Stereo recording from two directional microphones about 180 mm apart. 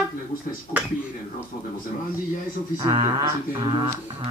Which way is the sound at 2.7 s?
25° right (ahead or behind).